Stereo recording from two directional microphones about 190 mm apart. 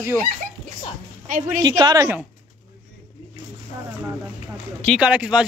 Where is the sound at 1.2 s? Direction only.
45° right (ahead or behind).